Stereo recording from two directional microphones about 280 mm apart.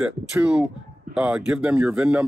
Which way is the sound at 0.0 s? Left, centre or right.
Centre.